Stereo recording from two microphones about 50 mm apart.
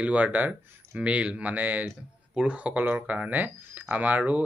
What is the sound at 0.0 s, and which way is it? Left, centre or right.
Speech, right.